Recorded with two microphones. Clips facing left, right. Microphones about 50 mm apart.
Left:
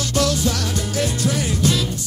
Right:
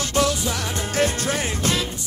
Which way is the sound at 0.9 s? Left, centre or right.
Right.